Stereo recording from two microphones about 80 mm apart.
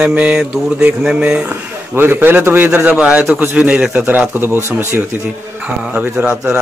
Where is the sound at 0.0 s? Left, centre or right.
Centre.